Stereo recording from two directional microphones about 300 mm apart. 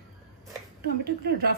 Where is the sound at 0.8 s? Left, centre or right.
Right.